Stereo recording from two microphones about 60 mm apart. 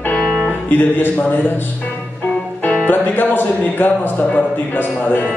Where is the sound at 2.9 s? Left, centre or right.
Left.